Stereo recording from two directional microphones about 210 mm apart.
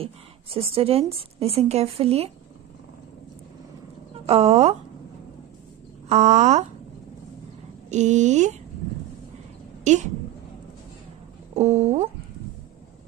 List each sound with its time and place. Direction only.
0.0 s a woman's voice: 25° right (ahead or behind)
4.3 s speech: 30° right (ahead or behind)
6.0 s speech: 35° right (ahead or behind)
7.9 s speech: 35° right (ahead or behind)
9.9 s speech: 35° right (ahead or behind)
11.5 s speech: 30° right (ahead or behind)